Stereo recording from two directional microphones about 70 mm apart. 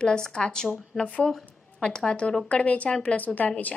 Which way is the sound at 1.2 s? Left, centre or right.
Centre.